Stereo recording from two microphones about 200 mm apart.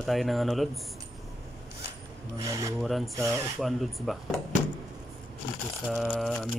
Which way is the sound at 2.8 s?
Centre (ahead or behind).